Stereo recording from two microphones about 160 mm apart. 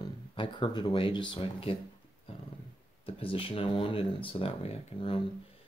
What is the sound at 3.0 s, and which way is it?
Speech, 35° left (ahead or behind).